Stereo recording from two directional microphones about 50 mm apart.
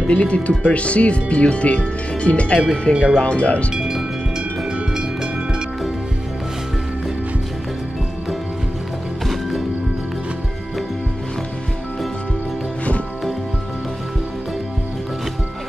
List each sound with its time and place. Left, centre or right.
0.1 s speech: left
2.9 s speech: centre
3.2 s speech: left
3.7 s speech: centre
4.9 s music: centre